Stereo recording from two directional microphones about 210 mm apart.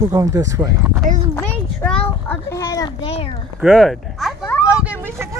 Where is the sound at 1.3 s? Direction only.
5° left (ahead or behind); by 3.3 s 25° left (ahead or behind).